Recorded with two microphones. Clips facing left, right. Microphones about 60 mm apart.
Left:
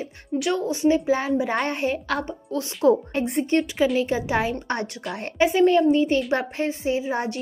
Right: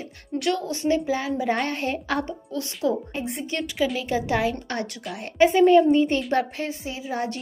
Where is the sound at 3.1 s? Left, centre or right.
Left.